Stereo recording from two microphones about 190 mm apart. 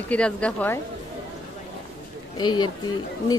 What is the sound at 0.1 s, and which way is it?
Speech, 5° left (ahead or behind).